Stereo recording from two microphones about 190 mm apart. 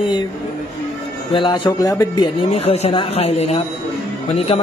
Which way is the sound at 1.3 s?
25° left (ahead or behind).